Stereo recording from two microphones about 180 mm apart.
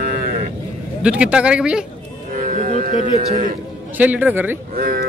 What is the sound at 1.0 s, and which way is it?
Speech, 5° right (ahead or behind).